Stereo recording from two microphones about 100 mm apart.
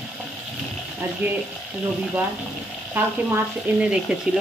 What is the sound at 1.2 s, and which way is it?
Speech, 15° right (ahead or behind).